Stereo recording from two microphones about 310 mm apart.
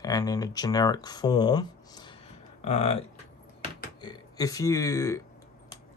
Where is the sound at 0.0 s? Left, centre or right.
Centre.